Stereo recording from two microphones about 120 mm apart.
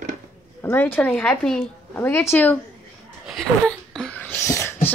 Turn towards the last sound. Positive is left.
turn(degrees=20)  # may be behind; listen again after turning